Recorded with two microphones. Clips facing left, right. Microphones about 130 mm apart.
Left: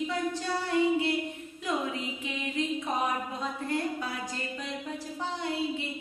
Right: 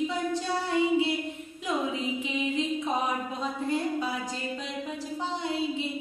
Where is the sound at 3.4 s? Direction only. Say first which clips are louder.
Right 4 dB; 20° right (ahead or behind).